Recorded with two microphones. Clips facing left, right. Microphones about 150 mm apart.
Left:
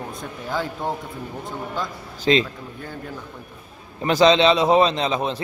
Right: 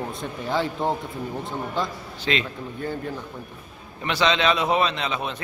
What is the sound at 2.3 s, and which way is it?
Speech, 35° left (ahead or behind).